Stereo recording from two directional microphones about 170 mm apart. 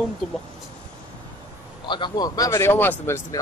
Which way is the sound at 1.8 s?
25° left (ahead or behind).